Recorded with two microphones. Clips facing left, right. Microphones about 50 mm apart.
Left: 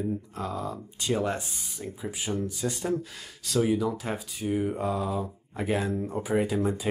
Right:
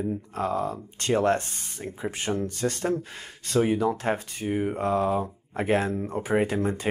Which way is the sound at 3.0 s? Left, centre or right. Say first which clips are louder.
Right 1 dB; right.